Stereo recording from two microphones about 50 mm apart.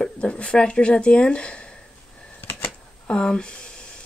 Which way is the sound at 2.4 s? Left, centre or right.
Left.